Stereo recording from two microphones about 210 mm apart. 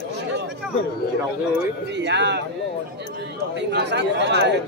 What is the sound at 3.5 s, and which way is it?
Speech, 55° right (ahead or behind).